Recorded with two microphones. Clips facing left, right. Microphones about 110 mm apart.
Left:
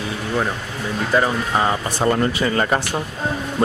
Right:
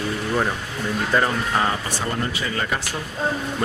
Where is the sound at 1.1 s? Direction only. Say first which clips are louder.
Left 3 dB; 5° left (ahead or behind).